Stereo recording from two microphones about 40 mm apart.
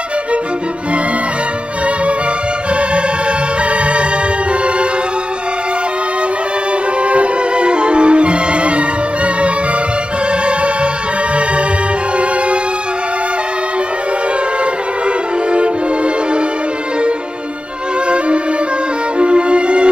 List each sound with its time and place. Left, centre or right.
7.0 s music: right
19.1 s music: right